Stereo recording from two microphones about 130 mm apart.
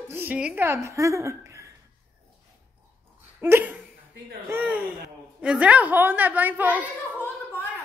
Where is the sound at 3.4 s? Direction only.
15° right (ahead or behind).